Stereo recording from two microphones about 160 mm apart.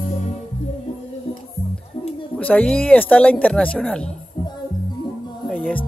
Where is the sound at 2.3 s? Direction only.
10° left (ahead or behind).